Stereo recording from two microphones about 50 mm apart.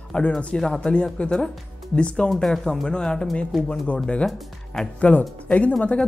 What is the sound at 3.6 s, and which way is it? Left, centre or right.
Speech, left.